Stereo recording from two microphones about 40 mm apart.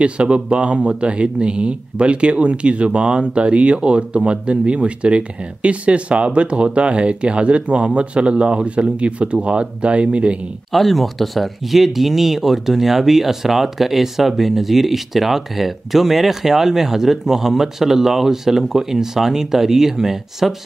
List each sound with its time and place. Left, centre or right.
0.0 s speech: right
10.7 s speech: centre